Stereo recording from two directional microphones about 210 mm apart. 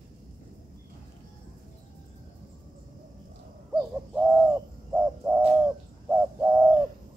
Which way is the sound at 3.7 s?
5° right (ahead or behind).